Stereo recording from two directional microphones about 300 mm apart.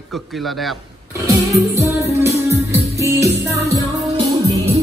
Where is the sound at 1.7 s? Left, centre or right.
Centre.